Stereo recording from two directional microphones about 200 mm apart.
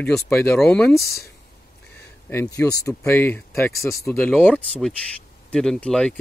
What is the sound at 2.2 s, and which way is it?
Speech, 10° left (ahead or behind).